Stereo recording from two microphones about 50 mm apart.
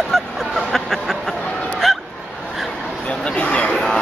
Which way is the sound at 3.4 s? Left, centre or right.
Left.